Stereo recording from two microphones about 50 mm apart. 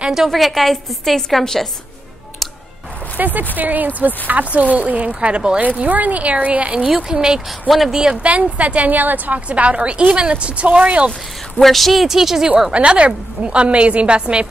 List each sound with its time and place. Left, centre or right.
0.0 s a woman's voice: centre
0.3 s a woman's voice: centre
3.2 s a woman's voice: right; by 7.4 s centre
7.7 s a woman's voice: centre
8.0 s a woman's voice: right
11.6 s speech: centre
12.7 s a woman's voice: right